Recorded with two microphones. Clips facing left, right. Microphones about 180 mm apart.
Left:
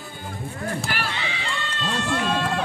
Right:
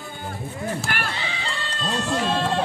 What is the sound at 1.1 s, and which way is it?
Run, 35° right (ahead or behind).